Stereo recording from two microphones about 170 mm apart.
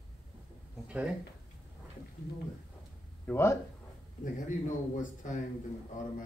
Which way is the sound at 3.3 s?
15° left (ahead or behind).